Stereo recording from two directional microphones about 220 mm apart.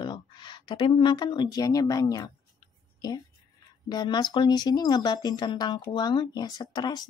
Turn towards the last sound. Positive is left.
turn(degrees=20)  # may be behind; listen again after turning